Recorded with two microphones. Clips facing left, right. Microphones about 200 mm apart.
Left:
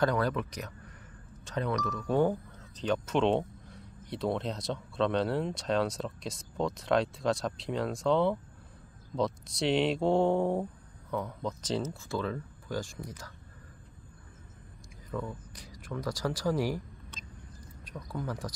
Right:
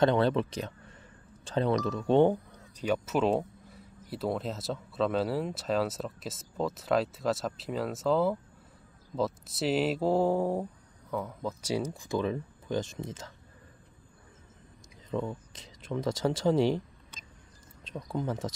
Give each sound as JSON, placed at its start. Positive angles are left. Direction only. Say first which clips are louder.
{"t": 0.0, "sound": "speech", "louder": "right 4 dB", "side_deg": -25}
{"t": 2.7, "sound": "speech", "louder": "even", "side_deg": -10}
{"t": 15.0, "sound": "speech", "louder": "right 4 dB", "side_deg": -25}
{"t": 17.8, "sound": "speech", "louder": "right 4 dB", "side_deg": -25}